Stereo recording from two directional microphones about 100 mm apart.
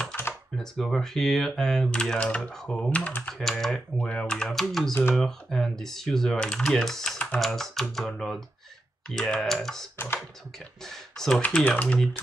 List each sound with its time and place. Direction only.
0.6 s speech: 5° left (ahead or behind)
3.3 s speech: 5° left (ahead or behind)
9.9 s computer keyboard: 25° left (ahead or behind)
10.9 s speech: 5° left (ahead or behind)